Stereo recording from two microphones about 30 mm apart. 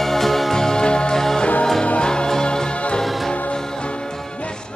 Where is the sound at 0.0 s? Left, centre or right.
Centre.